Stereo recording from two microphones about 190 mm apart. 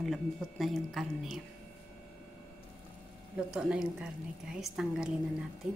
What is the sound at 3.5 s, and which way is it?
A woman's voice, 5° right (ahead or behind).